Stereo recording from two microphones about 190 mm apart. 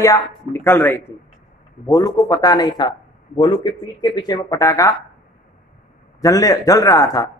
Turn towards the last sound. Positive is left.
turn(degrees=20)  # may be behind; listen again after turning